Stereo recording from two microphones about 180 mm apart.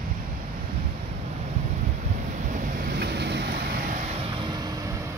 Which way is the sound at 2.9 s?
65° right (ahead or behind).